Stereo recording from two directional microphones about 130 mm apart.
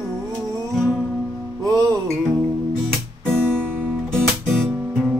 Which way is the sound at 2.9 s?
Centre (ahead or behind).